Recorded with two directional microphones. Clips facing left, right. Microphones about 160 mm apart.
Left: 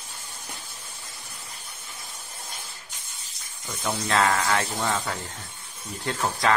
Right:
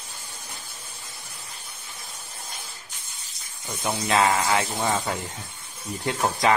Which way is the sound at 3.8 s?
15° right (ahead or behind).